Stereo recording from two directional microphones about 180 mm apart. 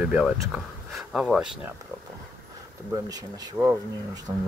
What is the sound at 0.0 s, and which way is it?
Speech, 5° right (ahead or behind).